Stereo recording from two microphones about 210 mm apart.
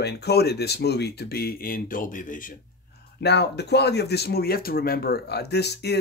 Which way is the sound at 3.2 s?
50° left (ahead or behind).